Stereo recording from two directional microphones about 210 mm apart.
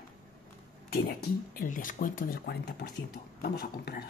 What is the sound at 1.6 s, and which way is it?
Speech, 40° left (ahead or behind).